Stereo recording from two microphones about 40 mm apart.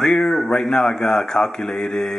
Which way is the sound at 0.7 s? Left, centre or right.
Centre.